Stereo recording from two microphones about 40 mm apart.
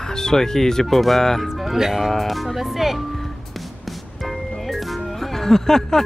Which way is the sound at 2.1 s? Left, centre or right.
Centre.